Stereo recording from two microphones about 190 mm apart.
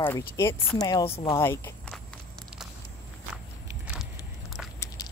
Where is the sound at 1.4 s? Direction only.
15° left (ahead or behind).